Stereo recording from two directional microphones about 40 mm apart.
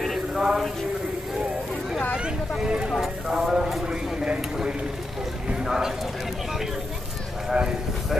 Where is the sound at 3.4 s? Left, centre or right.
Centre.